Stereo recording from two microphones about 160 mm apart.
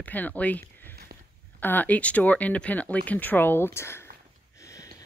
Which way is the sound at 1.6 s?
10° left (ahead or behind).